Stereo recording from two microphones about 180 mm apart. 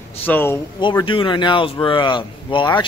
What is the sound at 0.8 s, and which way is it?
A man's voice, 25° left (ahead or behind).